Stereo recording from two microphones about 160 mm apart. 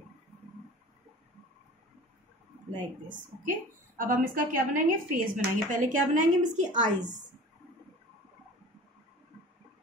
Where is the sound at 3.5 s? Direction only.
55° right (ahead or behind).